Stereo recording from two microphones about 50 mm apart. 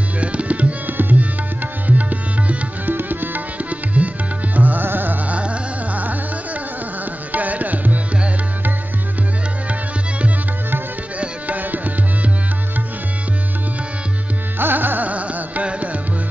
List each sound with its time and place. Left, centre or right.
0.2 s tabla: right
1.9 s music: right
4.0 s tabla: right
4.6 s music: right
5.3 s music: right
7.3 s tabla: right
11.1 s tabla: right
14.6 s music: right